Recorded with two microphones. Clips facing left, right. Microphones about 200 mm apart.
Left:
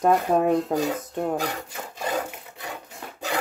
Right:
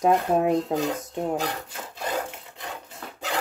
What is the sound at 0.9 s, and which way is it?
Speech, 10° left (ahead or behind).